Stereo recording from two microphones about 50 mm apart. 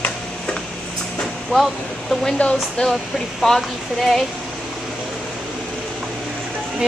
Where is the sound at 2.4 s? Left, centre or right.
Left.